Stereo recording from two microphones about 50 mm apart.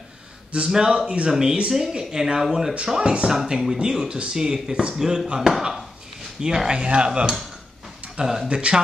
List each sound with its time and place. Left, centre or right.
0.5 s speech: centre
3.3 s speech: centre
8.5 s speech: right